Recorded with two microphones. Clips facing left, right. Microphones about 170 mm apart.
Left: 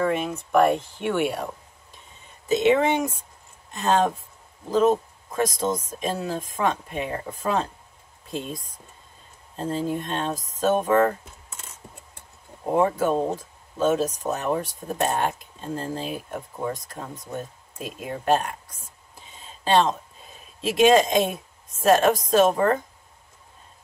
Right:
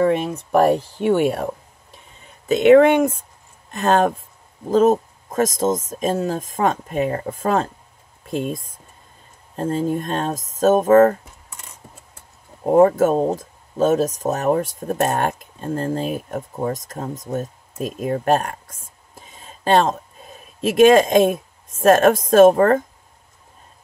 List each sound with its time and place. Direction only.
0.0 s speech: 35° right (ahead or behind)
2.4 s speech: 65° right (ahead or behind); by 11.1 s 45° right (ahead or behind)
12.6 s speech: 45° right (ahead or behind)
19.4 s a sound: 50° right (ahead or behind)
20.6 s speech: 50° right (ahead or behind)